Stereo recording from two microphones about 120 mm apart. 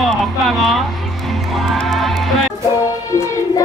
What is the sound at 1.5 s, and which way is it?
Music, centre (ahead or behind).